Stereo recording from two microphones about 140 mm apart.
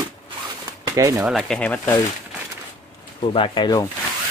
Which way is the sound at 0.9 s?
25° right (ahead or behind).